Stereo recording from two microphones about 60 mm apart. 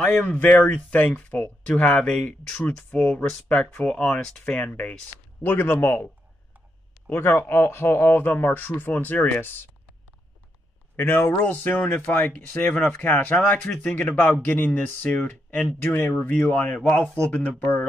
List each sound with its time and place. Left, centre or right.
0.2 s speech: left
5.4 s a man's voice: left
11.0 s a man's voice: left